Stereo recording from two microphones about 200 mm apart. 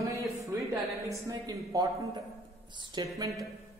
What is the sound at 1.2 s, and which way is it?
A man's voice, 15° right (ahead or behind).